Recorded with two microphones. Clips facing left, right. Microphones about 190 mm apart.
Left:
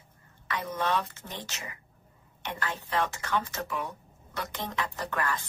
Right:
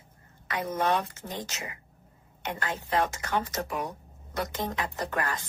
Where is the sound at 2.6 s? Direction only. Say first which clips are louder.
Right 2 dB; 45° right (ahead or behind).